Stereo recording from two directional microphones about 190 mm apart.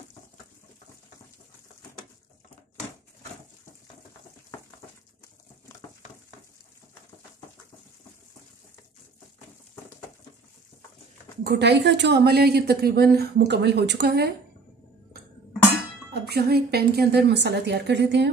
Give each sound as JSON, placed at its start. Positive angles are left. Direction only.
{"t": 11.4, "sound": "a woman's voice", "side_deg": -60}
{"t": 16.1, "sound": "a woman's voice", "side_deg": -55}